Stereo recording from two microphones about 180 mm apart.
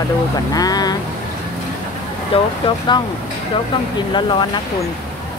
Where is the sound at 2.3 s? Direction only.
30° left (ahead or behind).